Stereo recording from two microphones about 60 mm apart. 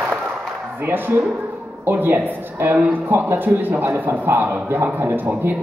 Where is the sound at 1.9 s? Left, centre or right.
Right.